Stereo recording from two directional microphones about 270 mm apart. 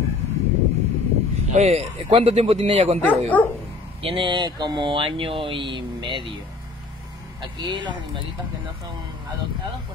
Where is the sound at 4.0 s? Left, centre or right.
Centre.